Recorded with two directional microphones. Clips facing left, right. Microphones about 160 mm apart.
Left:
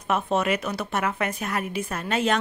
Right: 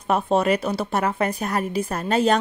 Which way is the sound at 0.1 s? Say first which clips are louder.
Right 4 dB; 35° right (ahead or behind).